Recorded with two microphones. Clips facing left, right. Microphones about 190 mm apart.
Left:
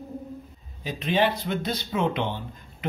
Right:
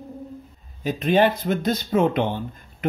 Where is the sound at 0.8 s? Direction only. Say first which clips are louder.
Right 5 dB; 50° right (ahead or behind).